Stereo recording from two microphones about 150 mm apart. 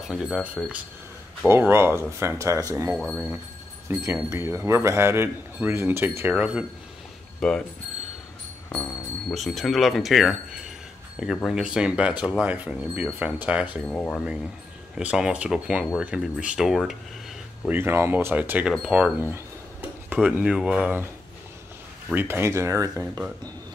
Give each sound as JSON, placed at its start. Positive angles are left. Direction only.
{"t": 0.1, "sound": "a man's voice", "side_deg": -5}
{"t": 3.0, "sound": "speech", "side_deg": 0}
{"t": 3.9, "sound": "a man's voice", "side_deg": -20}
{"t": 7.3, "sound": "speech", "side_deg": 5}
{"t": 9.3, "sound": "a man's voice", "side_deg": 0}
{"t": 13.8, "sound": "speech", "side_deg": 5}
{"t": 15.0, "sound": "a man's voice", "side_deg": -5}
{"t": 17.6, "sound": "a man's voice", "side_deg": -15}
{"t": 22.1, "sound": "a man's voice", "side_deg": -15}